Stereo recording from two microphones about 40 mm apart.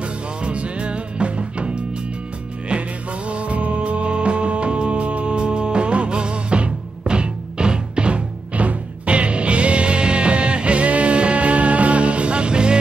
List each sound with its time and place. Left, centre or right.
0.0 s music: right
3.3 s music: right